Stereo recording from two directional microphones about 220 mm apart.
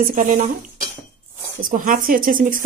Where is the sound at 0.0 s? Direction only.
35° right (ahead or behind).